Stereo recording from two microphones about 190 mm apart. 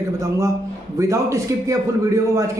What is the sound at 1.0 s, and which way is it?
Speech, 15° right (ahead or behind).